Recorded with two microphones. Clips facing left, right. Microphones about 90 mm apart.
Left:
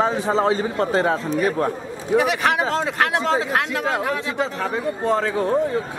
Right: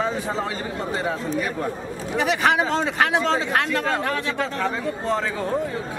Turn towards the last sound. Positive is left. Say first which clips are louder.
# left 2 dB
turn(degrees=10)  # may be behind; listen again after turning